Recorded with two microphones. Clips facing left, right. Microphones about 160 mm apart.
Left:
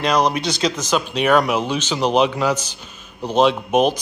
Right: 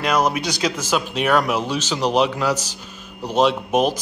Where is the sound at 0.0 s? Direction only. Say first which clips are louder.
Left 2 dB; 5° right (ahead or behind).